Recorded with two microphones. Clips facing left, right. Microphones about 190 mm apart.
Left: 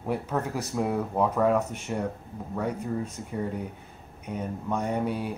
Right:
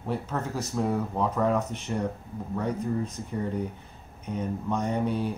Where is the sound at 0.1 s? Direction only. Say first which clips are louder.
Left 2 dB; 10° left (ahead or behind).